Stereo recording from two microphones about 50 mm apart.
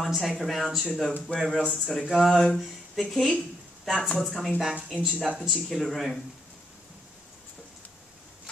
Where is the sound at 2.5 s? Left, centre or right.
Centre.